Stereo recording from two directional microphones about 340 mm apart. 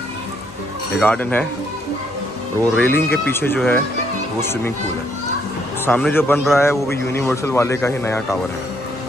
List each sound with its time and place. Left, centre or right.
0.9 s speech: centre
2.7 s a man's voice: centre
5.9 s a man's voice: centre